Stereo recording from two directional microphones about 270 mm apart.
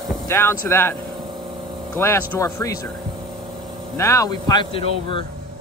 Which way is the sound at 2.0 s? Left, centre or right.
Centre.